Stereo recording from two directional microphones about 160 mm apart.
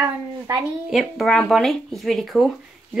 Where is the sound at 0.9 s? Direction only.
Centre (ahead or behind).